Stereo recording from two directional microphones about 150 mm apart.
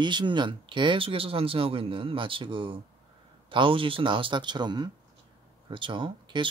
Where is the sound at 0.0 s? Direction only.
30° right (ahead or behind).